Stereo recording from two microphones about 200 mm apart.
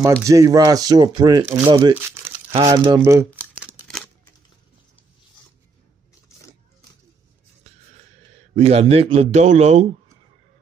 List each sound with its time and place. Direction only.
0.2 s speech: 15° right (ahead or behind)
3.8 s a sound: 5° left (ahead or behind)
8.5 s a man's voice: 30° right (ahead or behind)